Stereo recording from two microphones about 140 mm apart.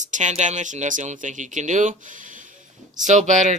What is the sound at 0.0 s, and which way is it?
Speech, 60° right (ahead or behind).